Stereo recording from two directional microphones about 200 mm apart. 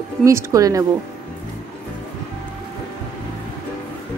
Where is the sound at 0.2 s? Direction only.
15° right (ahead or behind).